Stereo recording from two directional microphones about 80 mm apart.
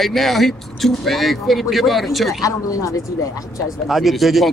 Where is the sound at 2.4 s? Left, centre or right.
Left.